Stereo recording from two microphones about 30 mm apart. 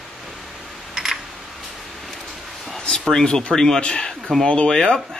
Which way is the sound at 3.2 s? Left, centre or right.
Left.